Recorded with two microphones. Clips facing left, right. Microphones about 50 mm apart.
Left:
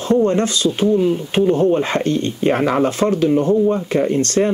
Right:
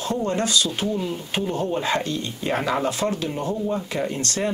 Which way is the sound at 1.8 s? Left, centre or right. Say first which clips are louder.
Left 6 dB; left.